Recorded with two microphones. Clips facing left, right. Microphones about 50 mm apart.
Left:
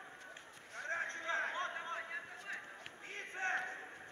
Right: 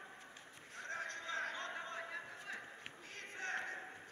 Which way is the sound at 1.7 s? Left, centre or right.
Centre.